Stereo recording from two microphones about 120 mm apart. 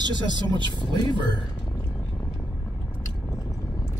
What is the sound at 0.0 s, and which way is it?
Speech, 40° right (ahead or behind).